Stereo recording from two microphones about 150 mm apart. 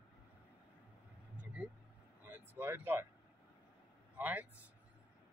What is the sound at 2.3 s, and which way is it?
Speech, 15° right (ahead or behind).